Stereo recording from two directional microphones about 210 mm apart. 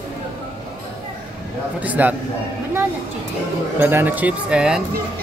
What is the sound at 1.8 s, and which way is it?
Speech, 5° right (ahead or behind).